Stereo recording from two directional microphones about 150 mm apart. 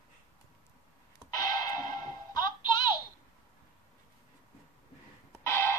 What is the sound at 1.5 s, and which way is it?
Music, 25° left (ahead or behind).